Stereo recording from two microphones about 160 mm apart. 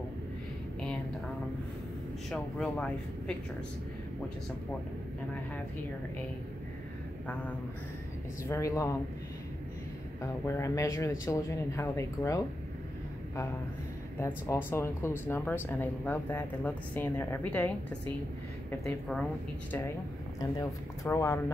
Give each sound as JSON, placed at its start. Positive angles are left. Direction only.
{"t": 2.3, "sound": "speech", "side_deg": 5}
{"t": 8.5, "sound": "speech", "side_deg": 20}
{"t": 10.4, "sound": "speech", "side_deg": 15}
{"t": 14.2, "sound": "speech", "side_deg": 15}
{"t": 20.3, "sound": "speech", "side_deg": 20}